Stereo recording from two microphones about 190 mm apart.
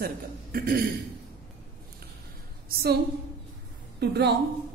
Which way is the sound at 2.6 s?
55° right (ahead or behind).